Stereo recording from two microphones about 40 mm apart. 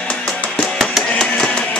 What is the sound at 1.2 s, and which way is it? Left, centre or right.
Music, centre.